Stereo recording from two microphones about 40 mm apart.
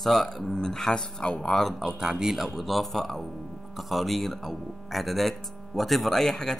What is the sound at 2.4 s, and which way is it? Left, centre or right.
Speech, centre.